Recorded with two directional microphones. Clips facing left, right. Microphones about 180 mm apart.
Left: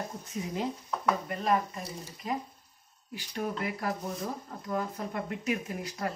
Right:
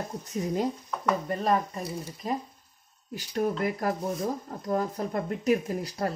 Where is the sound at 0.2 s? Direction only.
40° right (ahead or behind).